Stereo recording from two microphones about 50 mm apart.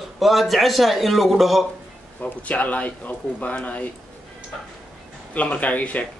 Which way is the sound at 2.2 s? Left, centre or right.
Left.